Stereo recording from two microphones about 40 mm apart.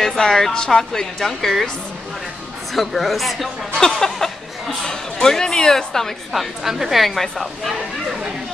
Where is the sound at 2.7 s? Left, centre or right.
Centre.